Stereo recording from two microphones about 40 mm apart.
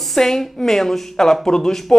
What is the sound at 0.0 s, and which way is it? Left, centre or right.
A woman's voice, centre.